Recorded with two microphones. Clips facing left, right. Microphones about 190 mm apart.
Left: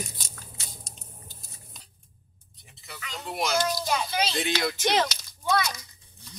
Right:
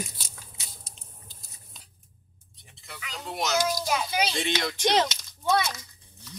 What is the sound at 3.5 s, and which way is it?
Speech, 10° right (ahead or behind).